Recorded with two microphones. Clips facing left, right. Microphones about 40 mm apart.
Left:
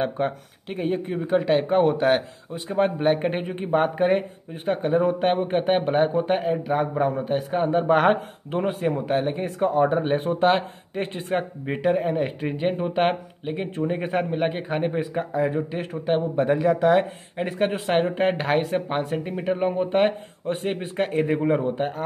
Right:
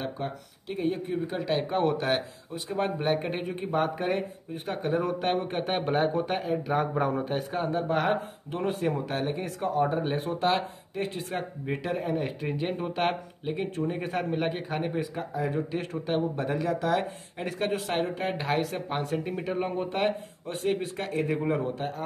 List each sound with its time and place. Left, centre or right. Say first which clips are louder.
0.0 s a man's voice: left 9 dB; left
4.6 s a man's voice: left 7 dB; centre
6.6 s speech: left 4 dB; centre
7.5 s a man's voice: left 8 dB; left
7.8 s speech: left 8 dB; left
8.7 s speech: left 6 dB; centre; by 11.4 s left
11.6 s a man's voice: left 8 dB; left
15.5 s speech: left 3 dB; centre
16.6 s a man's voice: left 8 dB; left
17.9 s speech: left 8 dB; left
19.0 s speech: left 5 dB; centre
20.0 s a man's voice: left 5 dB; left